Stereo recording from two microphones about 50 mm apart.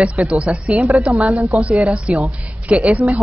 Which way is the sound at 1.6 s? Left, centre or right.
Right.